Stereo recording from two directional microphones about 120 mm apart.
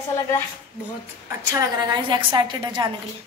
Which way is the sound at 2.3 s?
40° right (ahead or behind).